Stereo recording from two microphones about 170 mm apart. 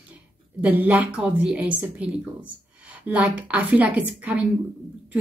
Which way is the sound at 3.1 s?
5° right (ahead or behind).